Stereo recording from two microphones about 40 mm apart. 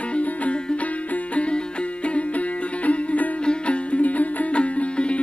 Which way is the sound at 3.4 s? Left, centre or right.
Left.